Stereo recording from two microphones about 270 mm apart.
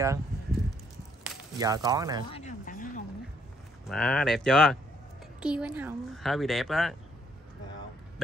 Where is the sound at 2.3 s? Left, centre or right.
Left.